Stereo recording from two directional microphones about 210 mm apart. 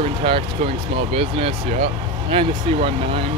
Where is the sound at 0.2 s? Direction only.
25° right (ahead or behind).